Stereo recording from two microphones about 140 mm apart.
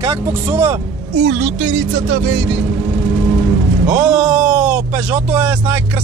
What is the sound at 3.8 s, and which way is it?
Speech, 5° right (ahead or behind).